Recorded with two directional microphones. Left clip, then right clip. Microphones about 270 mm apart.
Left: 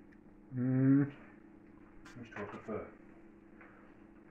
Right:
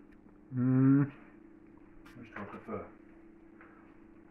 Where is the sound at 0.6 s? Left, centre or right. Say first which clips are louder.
Right 3 dB; right.